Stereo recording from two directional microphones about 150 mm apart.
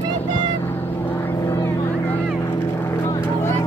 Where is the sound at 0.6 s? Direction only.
15° left (ahead or behind).